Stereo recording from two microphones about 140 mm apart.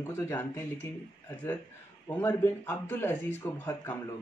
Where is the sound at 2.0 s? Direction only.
15° left (ahead or behind).